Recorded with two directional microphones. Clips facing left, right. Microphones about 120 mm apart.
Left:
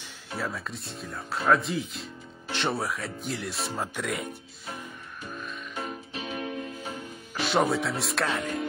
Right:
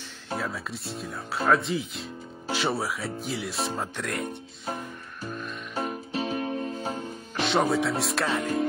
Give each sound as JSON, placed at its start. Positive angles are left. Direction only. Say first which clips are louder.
{"t": 0.4, "sound": "speech", "louder": "left 2 dB", "side_deg": 0}
{"t": 5.8, "sound": "music", "louder": "right 7 dB", "side_deg": -35}
{"t": 7.3, "sound": "speech", "louder": "right 1 dB", "side_deg": 0}